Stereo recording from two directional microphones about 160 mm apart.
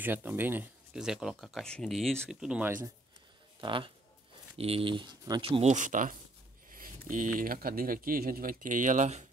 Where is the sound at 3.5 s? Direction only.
30° right (ahead or behind).